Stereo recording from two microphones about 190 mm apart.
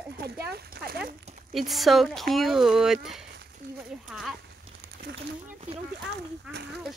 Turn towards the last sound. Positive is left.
turn(degrees=-5)  # may be behind; listen again after turning